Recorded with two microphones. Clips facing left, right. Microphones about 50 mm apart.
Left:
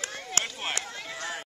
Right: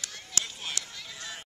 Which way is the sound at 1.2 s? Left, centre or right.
Left.